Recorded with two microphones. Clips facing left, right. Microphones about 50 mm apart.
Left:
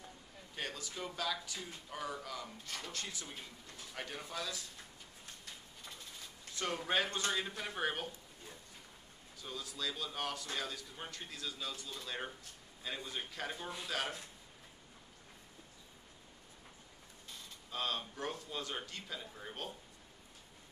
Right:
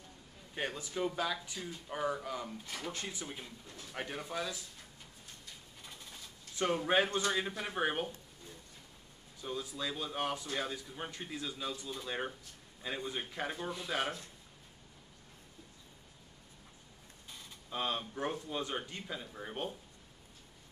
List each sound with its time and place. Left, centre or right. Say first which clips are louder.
0.6 s speech: right 6 dB; right
6.5 s speech: right 5 dB; right
9.4 s speech: right 4 dB; right
17.6 s speech: right 3 dB; right